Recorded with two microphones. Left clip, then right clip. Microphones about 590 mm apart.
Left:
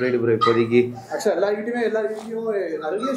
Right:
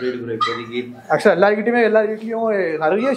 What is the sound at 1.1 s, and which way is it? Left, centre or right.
Speech, right.